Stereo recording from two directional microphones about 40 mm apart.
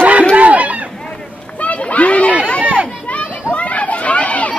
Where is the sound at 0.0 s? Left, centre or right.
Right.